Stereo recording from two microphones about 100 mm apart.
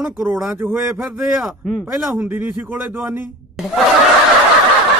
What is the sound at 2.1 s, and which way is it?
Speech, 20° right (ahead or behind).